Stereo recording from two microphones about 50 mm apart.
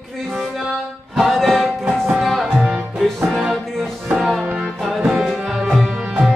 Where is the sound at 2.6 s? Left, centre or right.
Centre.